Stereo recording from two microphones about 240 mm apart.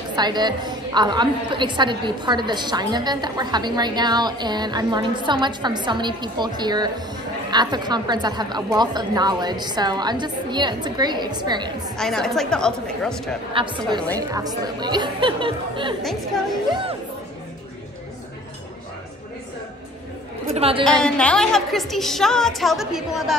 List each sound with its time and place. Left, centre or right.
0.1 s a woman's voice: centre
12.0 s a woman's voice: centre
13.5 s speech: right
20.4 s a woman's voice: right
20.8 s a woman's voice: centre